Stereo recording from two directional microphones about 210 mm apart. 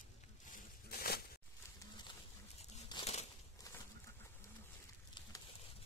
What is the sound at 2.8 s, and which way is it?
Crumpling, 20° left (ahead or behind).